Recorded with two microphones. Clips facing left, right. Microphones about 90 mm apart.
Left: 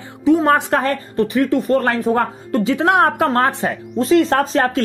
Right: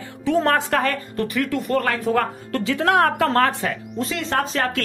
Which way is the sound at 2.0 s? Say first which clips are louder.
Left 3 dB; 20° left (ahead or behind).